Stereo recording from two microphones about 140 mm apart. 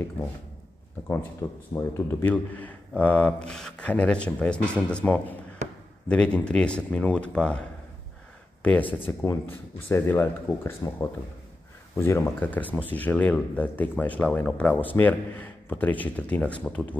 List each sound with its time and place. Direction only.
1.7 s speech: 15° left (ahead or behind)
8.9 s speech: 15° left (ahead or behind)